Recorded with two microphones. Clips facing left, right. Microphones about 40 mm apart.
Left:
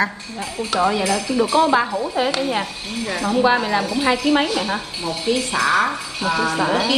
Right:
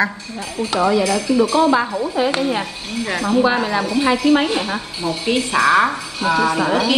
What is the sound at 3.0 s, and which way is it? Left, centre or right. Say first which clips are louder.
Speech: right 3 dB; right.